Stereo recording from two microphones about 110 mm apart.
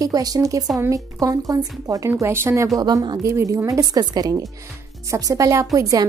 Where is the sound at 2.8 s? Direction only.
35° right (ahead or behind).